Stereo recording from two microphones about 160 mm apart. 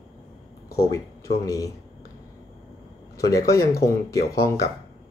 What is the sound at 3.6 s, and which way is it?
Speech, 90° left.